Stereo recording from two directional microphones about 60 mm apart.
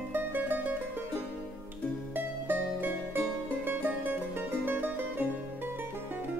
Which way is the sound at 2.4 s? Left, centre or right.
Right.